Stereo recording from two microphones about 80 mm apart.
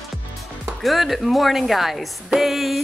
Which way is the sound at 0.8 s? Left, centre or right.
Centre.